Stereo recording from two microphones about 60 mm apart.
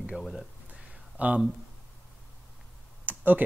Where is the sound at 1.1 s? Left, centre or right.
Right.